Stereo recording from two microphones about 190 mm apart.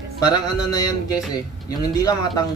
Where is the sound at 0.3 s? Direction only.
20° left (ahead or behind).